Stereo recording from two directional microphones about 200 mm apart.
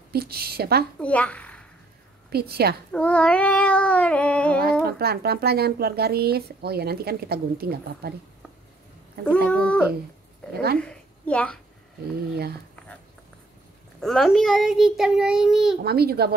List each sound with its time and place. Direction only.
0.1 s speech: 50° right (ahead or behind)
0.9 s a child's voice: 5° left (ahead or behind)
2.3 s speech: 50° right (ahead or behind)
2.9 s a child's voice: 5° left (ahead or behind)
4.8 s speech: 50° right (ahead or behind)
9.2 s speech: 5° left (ahead or behind)
10.5 s speech: 55° right (ahead or behind)
10.8 s a woman's voice: 5° left (ahead or behind)
14.0 s a child's voice: centre (ahead or behind)
15.8 s speech: 50° right (ahead or behind)